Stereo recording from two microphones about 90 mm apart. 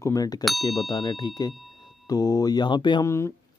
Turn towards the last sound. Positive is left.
turn(degrees=35)  # may be behind; listen again after turning